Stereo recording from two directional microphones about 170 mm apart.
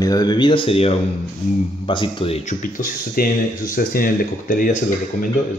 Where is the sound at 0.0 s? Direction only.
20° left (ahead or behind).